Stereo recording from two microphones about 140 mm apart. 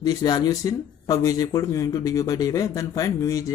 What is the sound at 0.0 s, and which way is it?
Speech, 25° left (ahead or behind).